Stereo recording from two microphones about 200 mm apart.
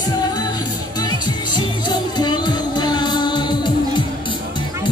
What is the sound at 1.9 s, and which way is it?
Music, 20° left (ahead or behind).